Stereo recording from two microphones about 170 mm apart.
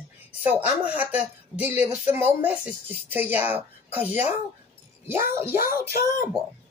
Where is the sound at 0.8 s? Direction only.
10° right (ahead or behind).